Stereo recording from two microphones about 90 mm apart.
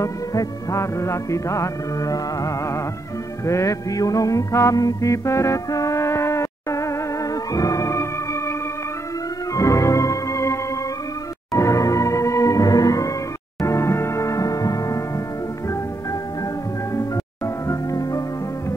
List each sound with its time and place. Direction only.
0.0 s music: 40° left (ahead or behind)
9.5 s organ: 35° left (ahead or behind)
11.5 s music: 35° left (ahead or behind)
16.9 s music: 35° left (ahead or behind)